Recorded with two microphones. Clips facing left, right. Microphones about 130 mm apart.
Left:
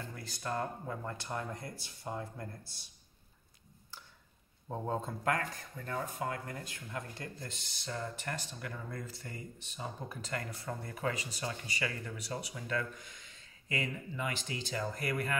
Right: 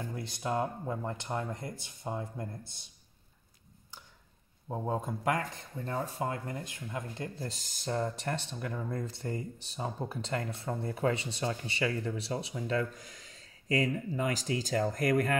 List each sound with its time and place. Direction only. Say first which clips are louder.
0.2 s speech: right 4 dB; 20° right (ahead or behind)
4.6 s speech: right 3 dB; 10° right (ahead or behind)
7.3 s speech: right 6 dB; 35° right (ahead or behind)
8.5 s speech: right 6 dB; 20° right (ahead or behind)
9.1 s speech: right 9 dB; 30° right (ahead or behind)